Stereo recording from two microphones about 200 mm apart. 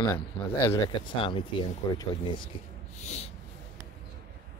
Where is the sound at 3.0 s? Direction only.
35° left (ahead or behind).